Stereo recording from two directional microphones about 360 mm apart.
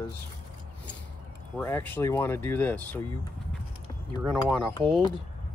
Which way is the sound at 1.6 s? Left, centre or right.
Centre.